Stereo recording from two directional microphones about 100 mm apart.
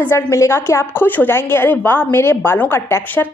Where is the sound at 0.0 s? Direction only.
25° left (ahead or behind).